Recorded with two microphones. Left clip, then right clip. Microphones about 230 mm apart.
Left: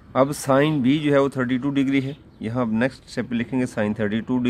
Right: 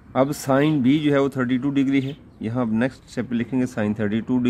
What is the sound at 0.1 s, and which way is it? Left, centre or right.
Speech, centre.